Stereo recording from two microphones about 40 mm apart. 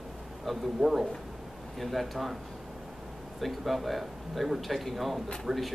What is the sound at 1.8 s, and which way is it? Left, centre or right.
Speech, centre.